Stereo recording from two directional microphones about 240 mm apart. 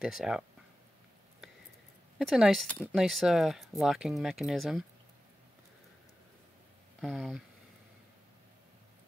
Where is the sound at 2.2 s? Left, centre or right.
Centre.